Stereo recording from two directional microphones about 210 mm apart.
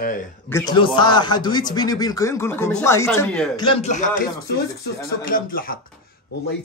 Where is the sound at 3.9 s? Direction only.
35° left (ahead or behind).